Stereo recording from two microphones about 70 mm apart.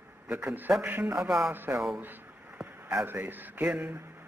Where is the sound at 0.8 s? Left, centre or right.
Right.